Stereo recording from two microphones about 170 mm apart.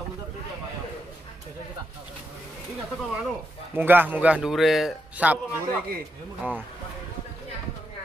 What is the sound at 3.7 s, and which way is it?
A man's voice, 10° right (ahead or behind).